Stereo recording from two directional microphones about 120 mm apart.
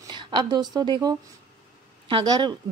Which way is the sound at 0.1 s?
40° right (ahead or behind).